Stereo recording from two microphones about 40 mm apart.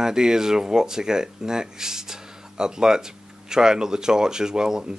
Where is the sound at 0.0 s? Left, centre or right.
Centre.